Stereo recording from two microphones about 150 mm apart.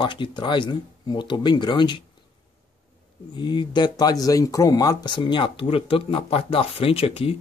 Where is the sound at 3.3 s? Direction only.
30° left (ahead or behind).